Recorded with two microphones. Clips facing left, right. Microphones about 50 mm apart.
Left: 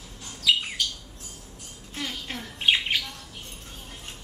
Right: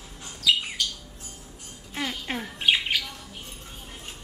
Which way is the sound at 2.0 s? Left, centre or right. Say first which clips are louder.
Right 3 dB; centre.